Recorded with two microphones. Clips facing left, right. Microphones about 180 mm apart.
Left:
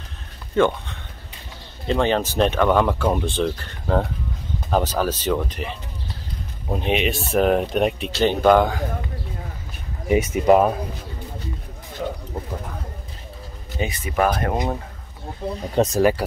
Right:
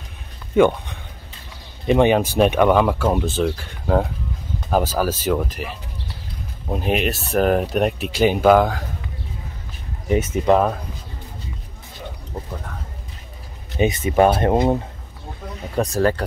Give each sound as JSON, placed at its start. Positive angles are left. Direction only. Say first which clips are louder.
{"t": 0.6, "sound": "speech", "louder": "right 3 dB", "side_deg": -15}
{"t": 10.0, "sound": "speech", "louder": "left 1 dB", "side_deg": 10}
{"t": 13.7, "sound": "speech", "louder": "right 6 dB", "side_deg": -20}
{"t": 15.7, "sound": "speech", "louder": "left 1 dB", "side_deg": 20}